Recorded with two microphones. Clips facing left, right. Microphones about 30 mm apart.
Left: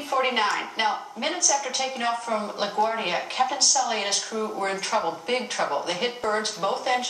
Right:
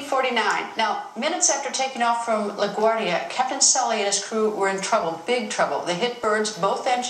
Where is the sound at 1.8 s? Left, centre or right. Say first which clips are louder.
Right 5 dB; centre.